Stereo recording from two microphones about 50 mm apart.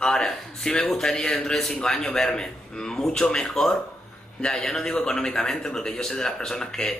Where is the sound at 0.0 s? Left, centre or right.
Centre.